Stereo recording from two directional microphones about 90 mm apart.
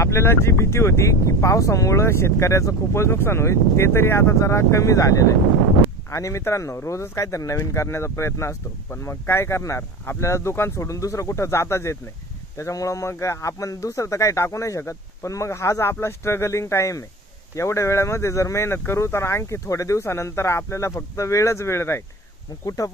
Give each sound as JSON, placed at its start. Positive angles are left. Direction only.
{"t": 0.0, "sound": "speech", "side_deg": 30}